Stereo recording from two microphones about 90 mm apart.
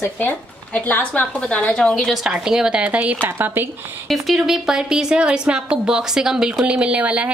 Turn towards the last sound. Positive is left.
turn(degrees=-15)  # may be behind; listen again after turning